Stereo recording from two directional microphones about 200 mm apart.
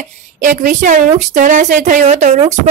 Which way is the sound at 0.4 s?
40° right (ahead or behind).